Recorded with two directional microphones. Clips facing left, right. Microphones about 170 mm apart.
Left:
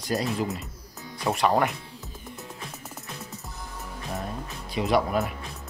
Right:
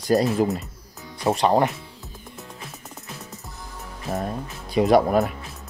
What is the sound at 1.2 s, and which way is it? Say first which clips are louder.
Speech: right 4 dB; 30° right (ahead or behind).